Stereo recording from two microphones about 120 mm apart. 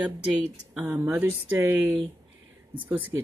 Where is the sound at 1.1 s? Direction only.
15° right (ahead or behind).